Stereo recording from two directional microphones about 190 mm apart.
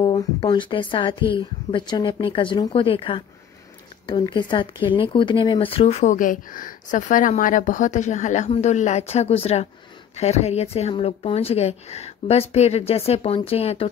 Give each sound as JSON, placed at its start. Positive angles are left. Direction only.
{"t": 0.0, "sound": "speech", "side_deg": 20}